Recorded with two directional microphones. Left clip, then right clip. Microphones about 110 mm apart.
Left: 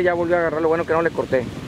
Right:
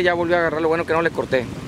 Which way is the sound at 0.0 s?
35° right (ahead or behind).